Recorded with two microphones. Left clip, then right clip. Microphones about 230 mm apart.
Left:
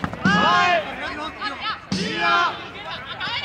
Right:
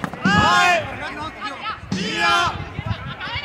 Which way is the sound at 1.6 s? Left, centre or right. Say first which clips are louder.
Left 1 dB; left.